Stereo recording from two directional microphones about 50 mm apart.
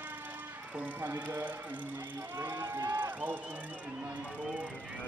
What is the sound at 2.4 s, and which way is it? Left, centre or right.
Run, right.